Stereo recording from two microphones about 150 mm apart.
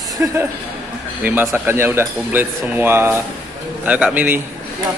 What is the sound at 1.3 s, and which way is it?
A man's voice, 15° right (ahead or behind).